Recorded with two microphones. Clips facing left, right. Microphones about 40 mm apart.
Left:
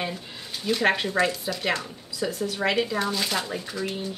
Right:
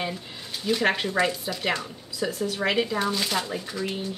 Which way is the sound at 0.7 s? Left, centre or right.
Centre.